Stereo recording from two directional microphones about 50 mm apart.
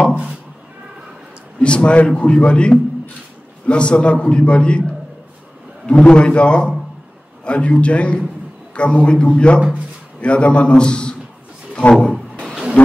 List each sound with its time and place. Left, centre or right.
1.6 s a man's voice: left
5.9 s a man's voice: left
12.8 s a sound: left